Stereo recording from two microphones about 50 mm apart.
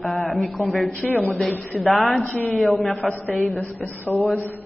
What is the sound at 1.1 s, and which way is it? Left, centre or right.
Speech, left.